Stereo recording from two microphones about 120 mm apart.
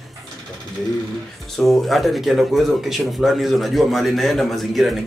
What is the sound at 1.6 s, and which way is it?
Speech, centre (ahead or behind).